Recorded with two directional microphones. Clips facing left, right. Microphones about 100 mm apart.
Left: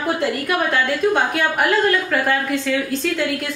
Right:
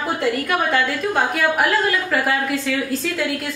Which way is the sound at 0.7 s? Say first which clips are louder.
Left 2 dB; centre (ahead or behind).